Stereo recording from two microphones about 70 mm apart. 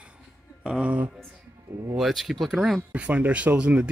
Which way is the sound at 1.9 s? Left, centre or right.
Centre.